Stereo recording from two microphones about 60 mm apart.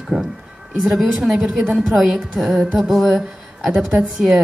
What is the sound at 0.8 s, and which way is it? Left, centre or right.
Speech, centre.